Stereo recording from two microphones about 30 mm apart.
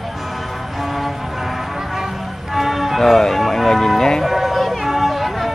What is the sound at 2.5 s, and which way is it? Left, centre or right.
Music, centre.